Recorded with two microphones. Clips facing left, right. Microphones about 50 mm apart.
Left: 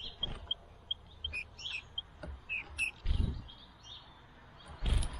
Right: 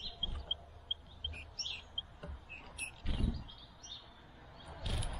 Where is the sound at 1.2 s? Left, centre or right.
Centre.